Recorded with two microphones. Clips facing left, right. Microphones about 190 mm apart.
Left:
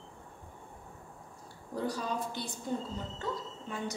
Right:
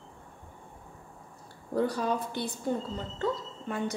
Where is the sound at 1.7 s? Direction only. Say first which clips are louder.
Right 6 dB; 60° right (ahead or behind).